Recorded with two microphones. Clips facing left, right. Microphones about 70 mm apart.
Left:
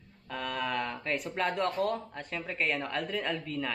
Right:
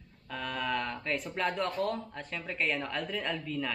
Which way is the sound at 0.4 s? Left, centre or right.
Centre.